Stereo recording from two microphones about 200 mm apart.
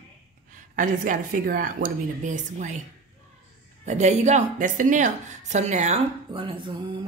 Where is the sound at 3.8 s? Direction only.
35° right (ahead or behind).